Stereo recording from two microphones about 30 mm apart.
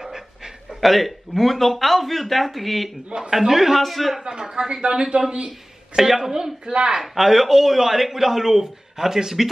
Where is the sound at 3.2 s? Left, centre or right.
Centre.